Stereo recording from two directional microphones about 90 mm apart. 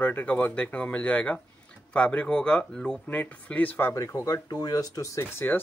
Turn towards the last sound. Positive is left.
turn(degrees=25)  # may be behind; listen again after turning